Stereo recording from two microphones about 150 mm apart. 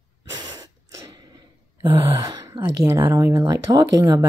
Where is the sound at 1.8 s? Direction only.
25° right (ahead or behind).